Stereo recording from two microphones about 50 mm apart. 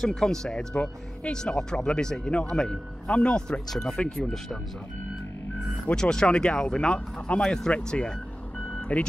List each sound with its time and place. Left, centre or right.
0.0 s speech: centre
5.9 s speech: centre
8.7 s vehicle: left